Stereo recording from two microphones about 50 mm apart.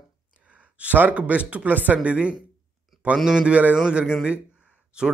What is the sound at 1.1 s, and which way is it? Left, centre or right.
Speech, right.